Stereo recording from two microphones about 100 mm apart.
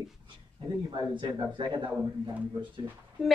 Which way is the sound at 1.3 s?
55° right (ahead or behind).